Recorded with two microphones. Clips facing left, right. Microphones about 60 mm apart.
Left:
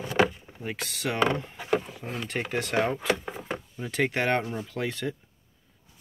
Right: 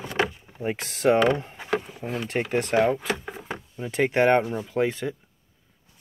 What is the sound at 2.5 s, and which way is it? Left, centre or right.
Speech, right.